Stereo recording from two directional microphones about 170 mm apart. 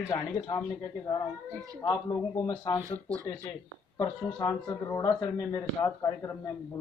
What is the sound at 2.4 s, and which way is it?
Speech, 20° left (ahead or behind).